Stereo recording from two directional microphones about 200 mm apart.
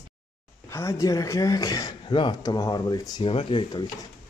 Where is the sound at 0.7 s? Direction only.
15° left (ahead or behind).